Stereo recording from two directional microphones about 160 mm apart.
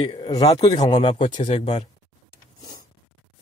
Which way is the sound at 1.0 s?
40° left (ahead or behind).